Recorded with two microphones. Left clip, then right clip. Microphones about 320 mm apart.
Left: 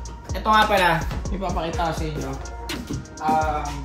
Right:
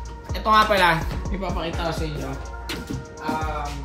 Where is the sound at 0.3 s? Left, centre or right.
Centre.